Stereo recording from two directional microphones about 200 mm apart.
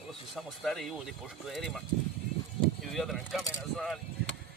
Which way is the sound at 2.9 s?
Centre (ahead or behind).